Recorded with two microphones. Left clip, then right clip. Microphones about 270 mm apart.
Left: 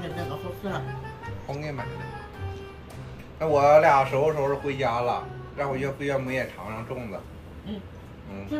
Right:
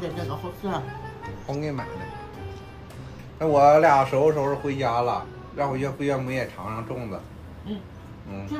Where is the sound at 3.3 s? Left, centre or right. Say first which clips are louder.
Right 1 dB; right.